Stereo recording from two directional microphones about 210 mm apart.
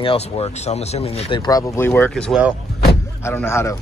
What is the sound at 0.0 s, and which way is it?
Speech, 25° left (ahead or behind).